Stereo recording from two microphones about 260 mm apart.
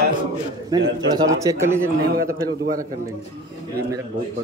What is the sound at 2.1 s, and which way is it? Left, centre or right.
Speech, right.